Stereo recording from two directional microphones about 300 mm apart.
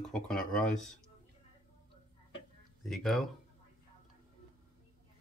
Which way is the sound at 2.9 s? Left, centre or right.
Centre.